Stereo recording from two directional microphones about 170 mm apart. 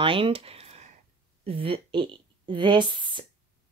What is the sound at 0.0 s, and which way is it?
A woman's voice, 30° right (ahead or behind).